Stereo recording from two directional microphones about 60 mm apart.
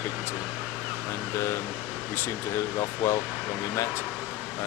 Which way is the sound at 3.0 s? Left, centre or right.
Left.